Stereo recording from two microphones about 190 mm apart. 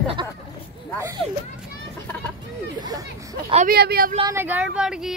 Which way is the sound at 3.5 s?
50° right (ahead or behind).